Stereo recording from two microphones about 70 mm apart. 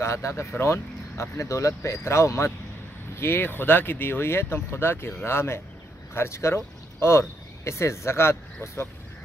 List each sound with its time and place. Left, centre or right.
0.0 s speech: left